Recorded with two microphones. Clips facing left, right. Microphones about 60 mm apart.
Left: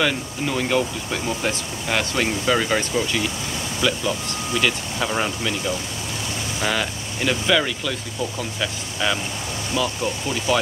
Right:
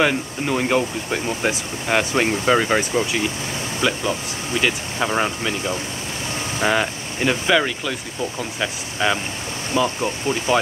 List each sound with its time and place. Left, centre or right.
0.0 s speech: right